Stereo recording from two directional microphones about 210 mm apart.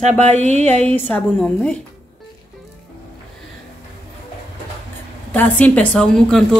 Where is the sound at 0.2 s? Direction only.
35° right (ahead or behind).